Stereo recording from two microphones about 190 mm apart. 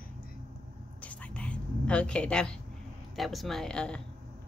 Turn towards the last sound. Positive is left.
turn(degrees=5)  # may be behind; listen again after turning